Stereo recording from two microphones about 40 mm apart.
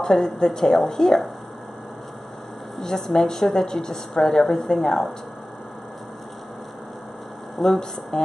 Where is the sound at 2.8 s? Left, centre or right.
Centre.